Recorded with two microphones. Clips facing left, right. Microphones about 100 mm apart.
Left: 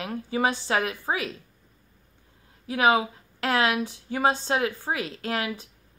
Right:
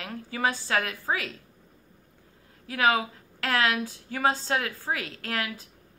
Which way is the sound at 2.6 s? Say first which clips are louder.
Left 3 dB; 20° left (ahead or behind).